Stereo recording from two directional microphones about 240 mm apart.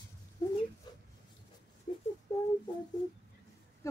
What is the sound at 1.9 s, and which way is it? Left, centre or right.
Wail, left.